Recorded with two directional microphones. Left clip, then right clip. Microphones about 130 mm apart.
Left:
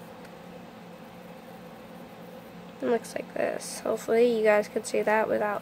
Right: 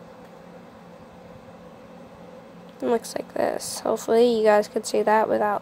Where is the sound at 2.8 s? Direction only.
20° right (ahead or behind).